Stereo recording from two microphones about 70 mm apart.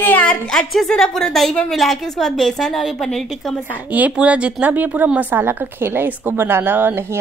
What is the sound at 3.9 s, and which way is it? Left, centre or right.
A woman's voice, right.